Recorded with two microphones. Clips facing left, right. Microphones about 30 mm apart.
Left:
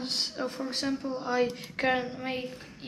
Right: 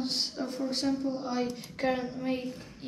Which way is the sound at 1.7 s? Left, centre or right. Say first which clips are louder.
Left 2 dB; left.